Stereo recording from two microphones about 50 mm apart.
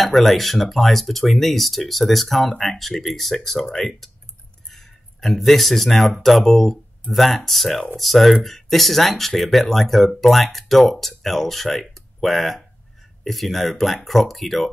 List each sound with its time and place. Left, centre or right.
0.0 s speech: centre
4.6 s a sound: centre
6.2 s speech: centre